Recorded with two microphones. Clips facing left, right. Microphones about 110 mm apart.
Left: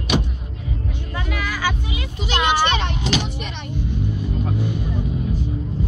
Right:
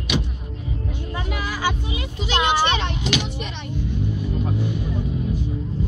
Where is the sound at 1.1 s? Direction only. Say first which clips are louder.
Left 2 dB; 25° right (ahead or behind).